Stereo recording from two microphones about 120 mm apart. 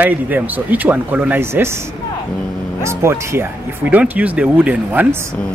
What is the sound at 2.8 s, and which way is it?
Speech, 20° right (ahead or behind).